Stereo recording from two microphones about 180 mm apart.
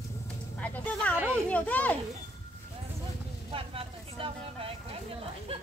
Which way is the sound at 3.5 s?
30° right (ahead or behind).